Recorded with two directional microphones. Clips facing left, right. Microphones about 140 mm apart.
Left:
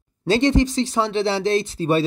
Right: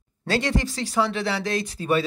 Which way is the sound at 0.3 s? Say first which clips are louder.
Left 7 dB; 25° left (ahead or behind).